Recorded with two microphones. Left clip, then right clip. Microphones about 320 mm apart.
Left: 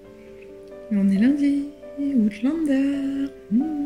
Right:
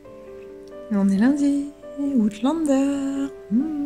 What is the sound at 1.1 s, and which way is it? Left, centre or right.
Speech, centre.